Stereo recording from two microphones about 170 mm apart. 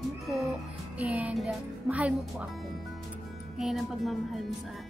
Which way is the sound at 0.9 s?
10° right (ahead or behind).